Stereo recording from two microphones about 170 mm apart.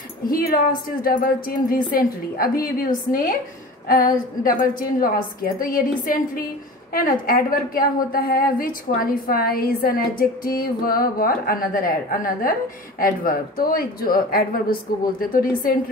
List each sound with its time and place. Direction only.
0.3 s a woman's voice: 60° left (ahead or behind)